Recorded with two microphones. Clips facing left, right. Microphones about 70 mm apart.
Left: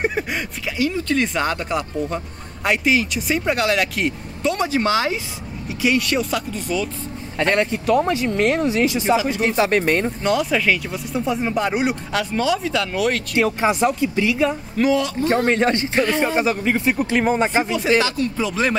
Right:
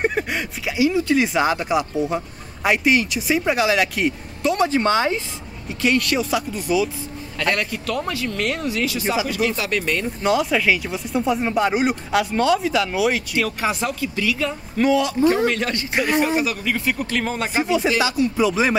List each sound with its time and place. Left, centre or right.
0.0 s a sound: centre
0.7 s speech: centre
7.3 s speech: left
10.2 s speech: centre
13.4 s speech: left
14.8 s speech: centre
15.2 s speech: left
15.9 s speech: centre
16.3 s speech: left
17.9 s speech: centre